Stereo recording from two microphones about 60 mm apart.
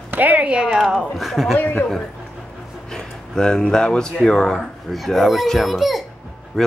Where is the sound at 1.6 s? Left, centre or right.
Left.